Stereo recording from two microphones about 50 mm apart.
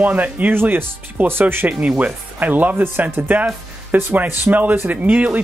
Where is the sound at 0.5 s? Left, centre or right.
Right.